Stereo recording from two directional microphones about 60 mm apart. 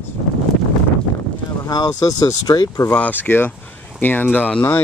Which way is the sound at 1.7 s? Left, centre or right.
Left.